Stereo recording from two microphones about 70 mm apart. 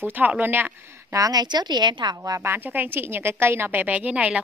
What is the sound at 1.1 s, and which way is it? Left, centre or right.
Speech, right.